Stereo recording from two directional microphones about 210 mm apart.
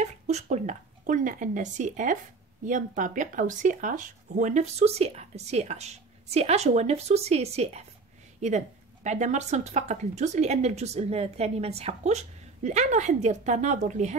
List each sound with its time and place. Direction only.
0.0 s speech: 35° right (ahead or behind)